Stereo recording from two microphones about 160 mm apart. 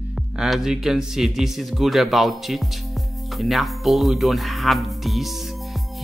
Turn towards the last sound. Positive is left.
turn(degrees=0)  # may be behind; listen again after turning